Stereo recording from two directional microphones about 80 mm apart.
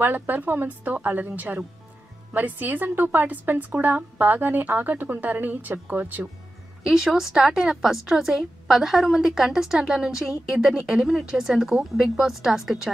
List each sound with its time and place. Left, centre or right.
0.0 s a woman's voice: right
6.9 s a woman's voice: centre